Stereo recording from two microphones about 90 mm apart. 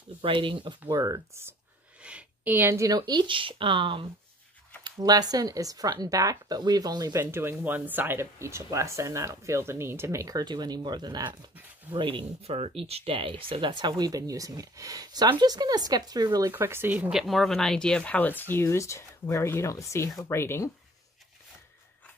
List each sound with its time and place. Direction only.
0.2 s speech: 65° right (ahead or behind)
0.9 s speech: 40° right (ahead or behind)
2.0 s a sound: 15° right (ahead or behind)
2.5 s speech: 30° right (ahead or behind)
2.9 s speech: 55° right (ahead or behind); by 4.1 s 70° right (ahead or behind)
4.8 s speech: 50° right (ahead or behind)
7.2 s speech: 25° right (ahead or behind); by 11.3 s 50° right (ahead or behind)
11.9 s speech: 65° right (ahead or behind); by 15.2 s 40° right (ahead or behind)
15.2 s speech: 55° right (ahead or behind)
16.5 s speech: 25° right (ahead or behind)
17.1 s speech: centre (ahead or behind); by 20.7 s 30° left (ahead or behind)